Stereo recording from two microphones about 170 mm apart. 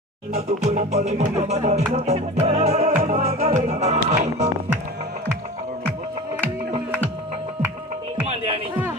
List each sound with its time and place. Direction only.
0.3 s music: 40° right (ahead or behind)